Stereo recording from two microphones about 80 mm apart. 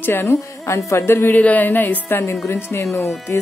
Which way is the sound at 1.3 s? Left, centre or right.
Centre.